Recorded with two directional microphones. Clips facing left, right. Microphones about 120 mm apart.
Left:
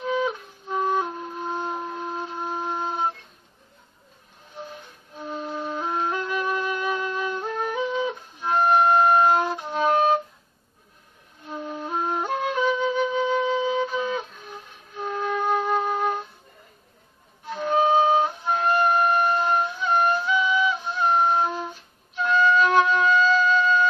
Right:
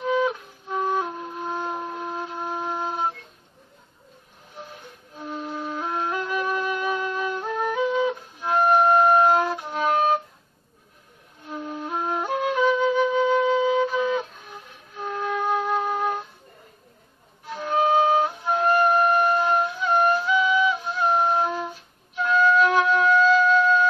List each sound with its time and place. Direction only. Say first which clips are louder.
0.2 s flute: right 2 dB; centre (ahead or behind)
5.3 s flute: left 1 dB; centre (ahead or behind)
11.5 s flute: even; centre (ahead or behind)
17.6 s flute: left 1 dB; 20° left (ahead or behind)
18.2 s flute: right 1 dB; centre (ahead or behind)
22.2 s wind instrument: right 1 dB; centre (ahead or behind)